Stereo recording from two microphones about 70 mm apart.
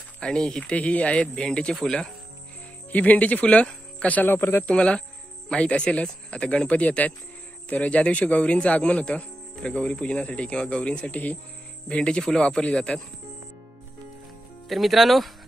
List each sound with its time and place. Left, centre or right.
0.2 s speech: centre
2.9 s speech: left
4.6 s speech: centre
14.7 s speech: centre